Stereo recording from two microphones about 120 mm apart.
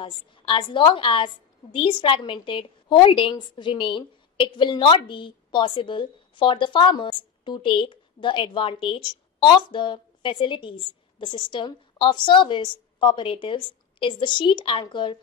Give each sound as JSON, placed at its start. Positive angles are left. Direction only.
{"t": 0.0, "sound": "a woman's voice", "side_deg": 45}